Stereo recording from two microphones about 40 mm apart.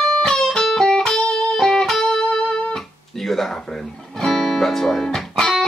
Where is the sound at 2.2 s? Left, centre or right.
Centre.